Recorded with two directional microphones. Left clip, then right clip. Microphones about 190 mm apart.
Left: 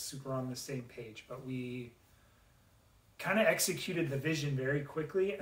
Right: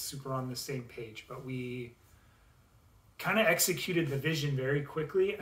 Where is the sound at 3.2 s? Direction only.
20° right (ahead or behind).